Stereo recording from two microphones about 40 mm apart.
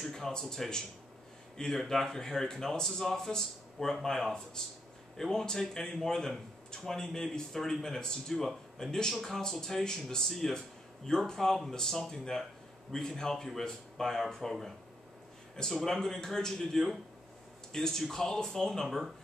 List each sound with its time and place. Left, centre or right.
0.0 s speech: centre
15.7 s speech: centre